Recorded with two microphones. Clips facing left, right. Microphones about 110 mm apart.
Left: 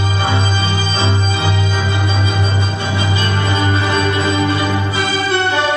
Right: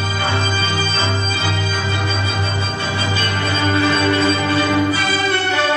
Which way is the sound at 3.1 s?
20° left (ahead or behind).